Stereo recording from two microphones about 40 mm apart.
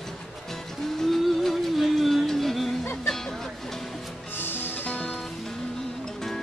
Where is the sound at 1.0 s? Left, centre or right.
Centre.